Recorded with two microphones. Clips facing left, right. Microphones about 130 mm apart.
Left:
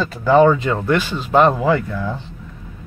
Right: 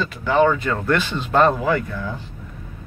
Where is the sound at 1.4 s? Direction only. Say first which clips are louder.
Left 3 dB; 25° left (ahead or behind).